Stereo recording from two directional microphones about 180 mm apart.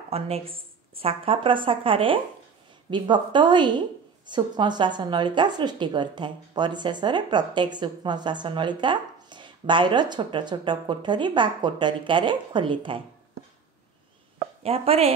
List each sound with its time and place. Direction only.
0.1 s a woman's voice: 30° right (ahead or behind)
14.6 s a woman's voice: 35° right (ahead or behind)